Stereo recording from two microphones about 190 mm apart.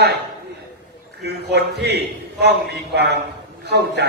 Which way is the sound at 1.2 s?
60° right (ahead or behind).